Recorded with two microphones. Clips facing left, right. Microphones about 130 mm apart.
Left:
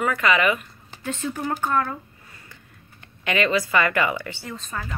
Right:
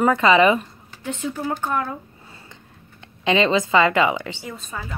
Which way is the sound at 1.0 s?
15° right (ahead or behind).